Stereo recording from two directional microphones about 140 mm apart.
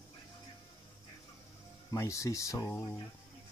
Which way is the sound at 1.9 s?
20° left (ahead or behind).